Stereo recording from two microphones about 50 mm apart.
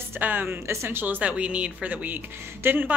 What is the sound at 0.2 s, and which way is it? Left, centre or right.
A woman's voice, right.